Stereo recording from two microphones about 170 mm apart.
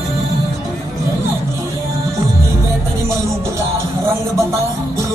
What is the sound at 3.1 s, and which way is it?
Music, 15° right (ahead or behind).